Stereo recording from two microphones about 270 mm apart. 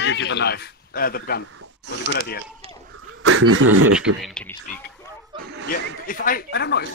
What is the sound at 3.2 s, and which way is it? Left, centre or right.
Speech, right.